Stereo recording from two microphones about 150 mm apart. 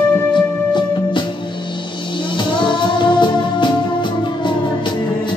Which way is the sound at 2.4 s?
30° left (ahead or behind).